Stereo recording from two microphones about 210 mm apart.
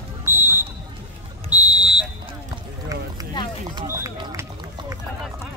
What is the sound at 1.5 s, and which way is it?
Buzzer, 5° right (ahead or behind).